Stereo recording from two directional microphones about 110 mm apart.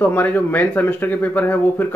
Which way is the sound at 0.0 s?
15° left (ahead or behind).